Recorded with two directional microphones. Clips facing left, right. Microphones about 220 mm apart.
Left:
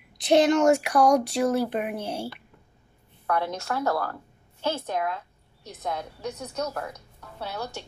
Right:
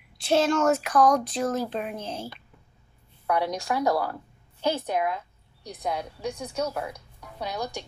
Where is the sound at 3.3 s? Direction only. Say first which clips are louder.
Right 2 dB; 15° right (ahead or behind).